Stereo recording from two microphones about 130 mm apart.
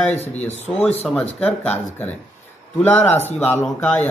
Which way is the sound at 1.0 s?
10° left (ahead or behind).